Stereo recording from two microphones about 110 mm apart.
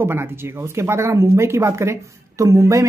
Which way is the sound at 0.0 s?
20° right (ahead or behind).